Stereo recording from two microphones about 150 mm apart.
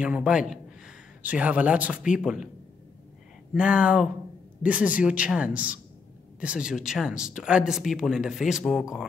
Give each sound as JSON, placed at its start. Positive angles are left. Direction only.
{"t": 0.0, "sound": "speech", "side_deg": -5}
{"t": 3.5, "sound": "speech", "side_deg": -5}